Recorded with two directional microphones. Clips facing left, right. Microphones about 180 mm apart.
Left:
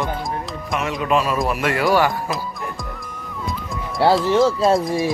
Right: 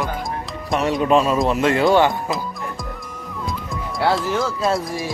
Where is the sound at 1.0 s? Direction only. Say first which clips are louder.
Right 3 dB; 30° right (ahead or behind).